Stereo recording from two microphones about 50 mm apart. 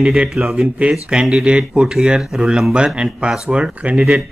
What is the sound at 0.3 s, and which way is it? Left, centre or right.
Speech, centre.